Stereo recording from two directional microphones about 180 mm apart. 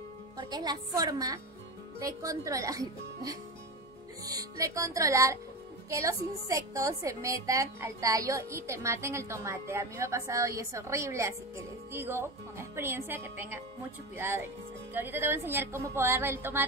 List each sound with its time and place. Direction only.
0.4 s a woman's voice: 20° right (ahead or behind)